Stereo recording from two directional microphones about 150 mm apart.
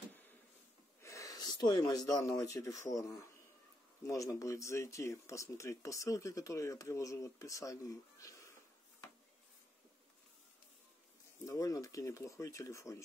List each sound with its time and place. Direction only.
1.0 s speech: 20° left (ahead or behind)
11.4 s speech: 20° left (ahead or behind)